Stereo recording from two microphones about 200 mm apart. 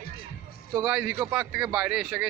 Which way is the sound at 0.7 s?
5° right (ahead or behind).